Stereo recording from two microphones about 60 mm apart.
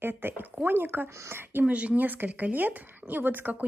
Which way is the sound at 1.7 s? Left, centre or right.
Right.